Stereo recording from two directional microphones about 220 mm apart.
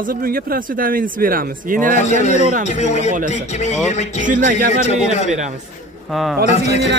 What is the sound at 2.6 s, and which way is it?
Speech, 30° left (ahead or behind).